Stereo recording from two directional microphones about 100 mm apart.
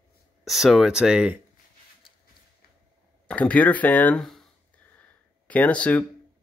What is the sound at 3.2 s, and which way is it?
Speech, 15° left (ahead or behind).